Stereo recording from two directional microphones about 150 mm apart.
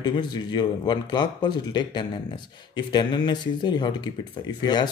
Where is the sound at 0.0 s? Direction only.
30° left (ahead or behind).